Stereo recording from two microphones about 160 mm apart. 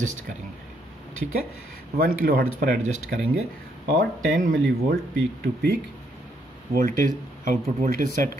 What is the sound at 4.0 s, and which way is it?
Speech, 70° right (ahead or behind).